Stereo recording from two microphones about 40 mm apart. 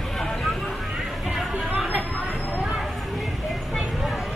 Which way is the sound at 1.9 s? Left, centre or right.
Right.